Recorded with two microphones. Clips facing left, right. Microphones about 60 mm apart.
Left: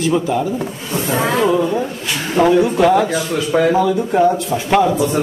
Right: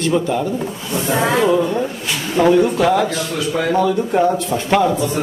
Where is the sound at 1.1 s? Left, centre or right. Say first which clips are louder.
Right 1 dB; right.